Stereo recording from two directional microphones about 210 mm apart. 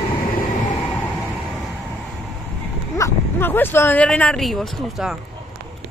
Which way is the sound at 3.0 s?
10° left (ahead or behind).